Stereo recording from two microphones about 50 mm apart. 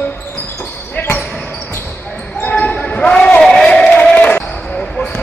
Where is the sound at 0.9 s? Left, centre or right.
Left.